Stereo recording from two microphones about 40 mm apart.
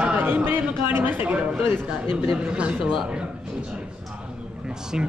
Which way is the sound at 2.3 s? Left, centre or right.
Right.